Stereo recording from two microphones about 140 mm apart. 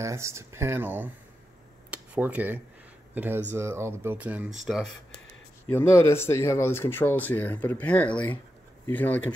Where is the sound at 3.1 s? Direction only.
15° right (ahead or behind).